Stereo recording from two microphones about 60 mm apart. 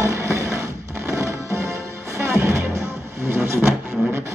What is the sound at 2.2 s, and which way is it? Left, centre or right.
Music, right.